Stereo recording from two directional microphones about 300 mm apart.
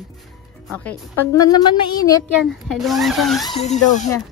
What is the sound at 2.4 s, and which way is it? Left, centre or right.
Speech, centre.